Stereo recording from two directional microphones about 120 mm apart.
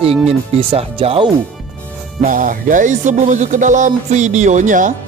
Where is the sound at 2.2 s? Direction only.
90° right.